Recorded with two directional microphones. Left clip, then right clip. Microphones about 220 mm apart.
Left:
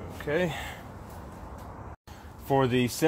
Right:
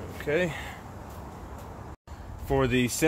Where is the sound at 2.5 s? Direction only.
25° left (ahead or behind).